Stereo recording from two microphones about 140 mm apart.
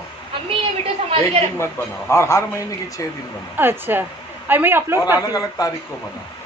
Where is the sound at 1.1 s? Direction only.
45° right (ahead or behind).